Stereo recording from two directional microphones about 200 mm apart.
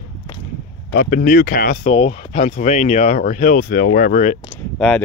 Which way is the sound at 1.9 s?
30° left (ahead or behind).